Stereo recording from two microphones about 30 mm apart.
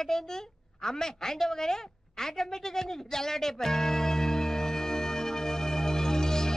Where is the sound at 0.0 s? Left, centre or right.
Centre.